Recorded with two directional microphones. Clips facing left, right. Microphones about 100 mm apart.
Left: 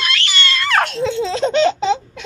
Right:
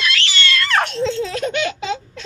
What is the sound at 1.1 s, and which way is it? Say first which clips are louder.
Laughter: left 5 dB; 20° left (ahead or behind).